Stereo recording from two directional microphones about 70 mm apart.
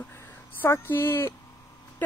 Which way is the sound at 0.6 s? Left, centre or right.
Left.